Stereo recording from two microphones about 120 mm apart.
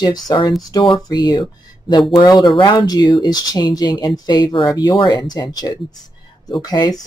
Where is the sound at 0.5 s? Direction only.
30° left (ahead or behind).